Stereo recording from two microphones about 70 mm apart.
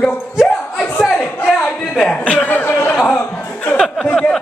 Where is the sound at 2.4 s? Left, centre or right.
Left.